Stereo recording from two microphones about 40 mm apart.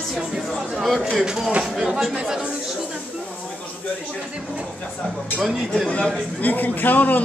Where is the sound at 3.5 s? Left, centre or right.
Left.